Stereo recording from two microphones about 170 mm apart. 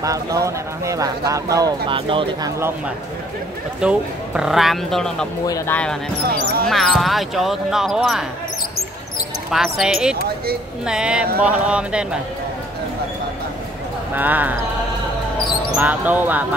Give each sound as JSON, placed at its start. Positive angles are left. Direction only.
{"t": 0.0, "sound": "speech", "side_deg": -20}
{"t": 3.8, "sound": "speech", "side_deg": -5}
{"t": 9.5, "sound": "speech", "side_deg": 0}
{"t": 14.1, "sound": "speech", "side_deg": -10}
{"t": 15.7, "sound": "speech", "side_deg": -10}